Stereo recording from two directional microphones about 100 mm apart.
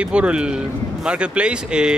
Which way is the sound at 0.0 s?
10° right (ahead or behind).